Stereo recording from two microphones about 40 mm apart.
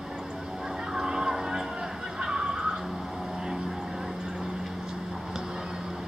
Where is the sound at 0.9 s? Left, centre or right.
Centre.